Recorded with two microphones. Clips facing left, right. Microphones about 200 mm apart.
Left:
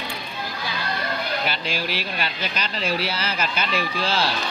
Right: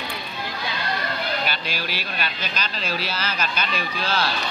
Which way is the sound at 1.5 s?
25° left (ahead or behind).